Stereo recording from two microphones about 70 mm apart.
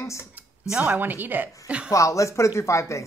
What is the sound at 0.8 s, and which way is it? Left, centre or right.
A woman's voice, right.